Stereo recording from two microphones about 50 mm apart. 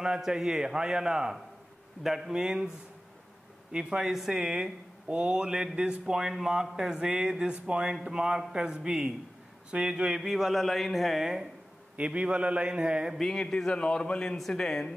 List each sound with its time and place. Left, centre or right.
0.0 s speech: centre
3.7 s speech: centre
5.0 s speech: right
12.0 s speech: right
13.2 s a man's voice: centre
14.5 s speech: centre